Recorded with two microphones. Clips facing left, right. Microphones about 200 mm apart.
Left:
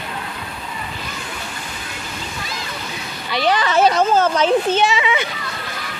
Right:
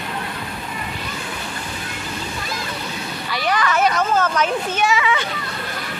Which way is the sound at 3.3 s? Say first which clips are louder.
Left 3 dB; 30° left (ahead or behind).